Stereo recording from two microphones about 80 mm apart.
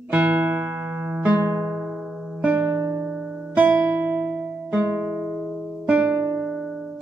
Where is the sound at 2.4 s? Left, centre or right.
Right.